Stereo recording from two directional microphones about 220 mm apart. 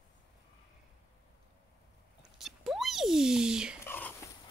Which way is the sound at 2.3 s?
Centre (ahead or behind).